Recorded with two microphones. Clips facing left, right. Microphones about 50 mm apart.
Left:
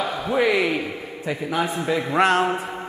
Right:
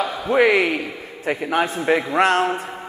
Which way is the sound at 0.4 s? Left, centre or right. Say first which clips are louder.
Right 4 dB; right.